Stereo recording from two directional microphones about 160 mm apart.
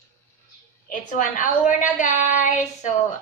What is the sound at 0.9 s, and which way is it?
A woman's voice, 55° left (ahead or behind).